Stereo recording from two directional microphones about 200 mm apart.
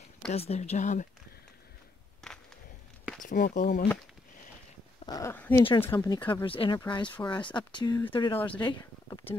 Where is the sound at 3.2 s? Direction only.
40° left (ahead or behind).